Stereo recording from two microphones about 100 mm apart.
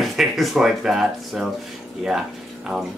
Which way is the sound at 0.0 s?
Centre (ahead or behind).